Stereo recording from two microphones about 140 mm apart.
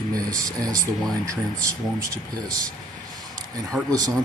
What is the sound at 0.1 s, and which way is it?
Speech, 25° right (ahead or behind).